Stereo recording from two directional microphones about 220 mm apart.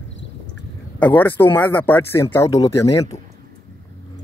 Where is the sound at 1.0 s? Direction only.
10° left (ahead or behind).